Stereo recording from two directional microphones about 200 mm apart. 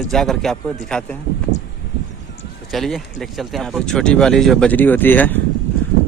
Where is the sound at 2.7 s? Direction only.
Centre (ahead or behind).